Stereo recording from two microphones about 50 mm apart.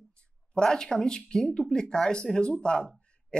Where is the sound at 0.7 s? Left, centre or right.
Centre.